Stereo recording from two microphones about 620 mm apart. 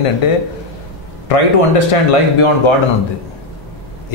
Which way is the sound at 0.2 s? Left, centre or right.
Left.